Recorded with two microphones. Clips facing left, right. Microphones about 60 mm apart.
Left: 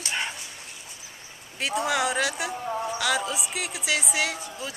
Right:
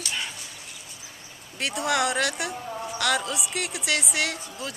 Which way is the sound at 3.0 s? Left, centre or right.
Centre.